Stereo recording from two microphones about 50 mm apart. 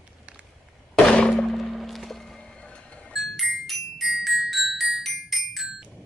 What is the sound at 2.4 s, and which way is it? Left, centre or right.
Vehicle, left.